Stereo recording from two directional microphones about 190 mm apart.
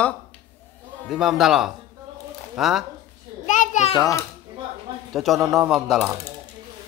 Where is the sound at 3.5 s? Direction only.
40° left (ahead or behind).